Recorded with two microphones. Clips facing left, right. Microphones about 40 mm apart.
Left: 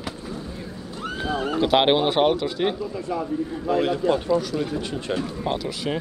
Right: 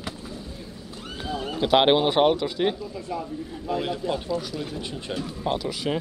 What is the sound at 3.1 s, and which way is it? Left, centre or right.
Speech, left.